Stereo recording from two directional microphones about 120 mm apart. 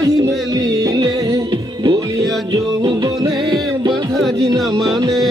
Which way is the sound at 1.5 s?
40° right (ahead or behind).